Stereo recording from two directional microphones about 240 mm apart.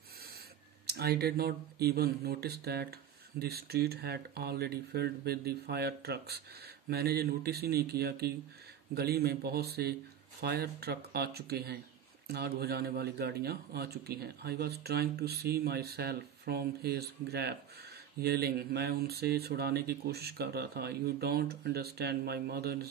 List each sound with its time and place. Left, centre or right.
0.8 s speech: right